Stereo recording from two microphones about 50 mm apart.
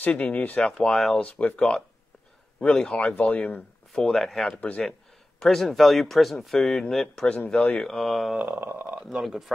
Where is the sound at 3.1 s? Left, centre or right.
Left.